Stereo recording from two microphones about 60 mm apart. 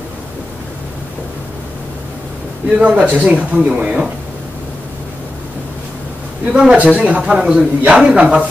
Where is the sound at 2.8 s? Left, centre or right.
Right.